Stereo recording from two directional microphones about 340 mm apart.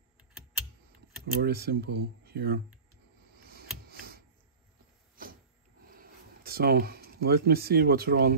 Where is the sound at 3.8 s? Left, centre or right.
Right.